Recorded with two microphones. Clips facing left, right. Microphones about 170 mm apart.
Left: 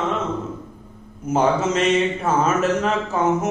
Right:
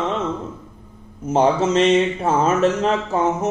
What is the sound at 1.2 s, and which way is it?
Speech, 30° right (ahead or behind).